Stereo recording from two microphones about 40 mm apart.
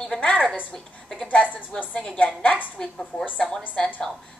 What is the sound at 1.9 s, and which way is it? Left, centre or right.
Speech, left.